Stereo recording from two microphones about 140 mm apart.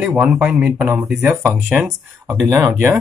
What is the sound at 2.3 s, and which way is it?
Speech, 25° right (ahead or behind).